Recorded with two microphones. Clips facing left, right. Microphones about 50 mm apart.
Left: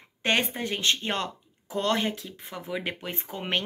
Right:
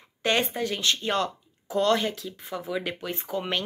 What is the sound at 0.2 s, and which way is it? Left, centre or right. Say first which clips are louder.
A woman's voice: right 1 dB; left.